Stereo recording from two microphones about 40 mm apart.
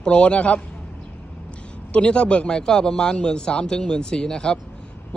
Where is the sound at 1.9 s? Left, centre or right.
Left.